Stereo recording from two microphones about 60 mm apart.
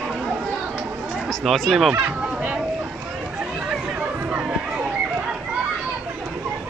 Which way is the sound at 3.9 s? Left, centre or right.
Right.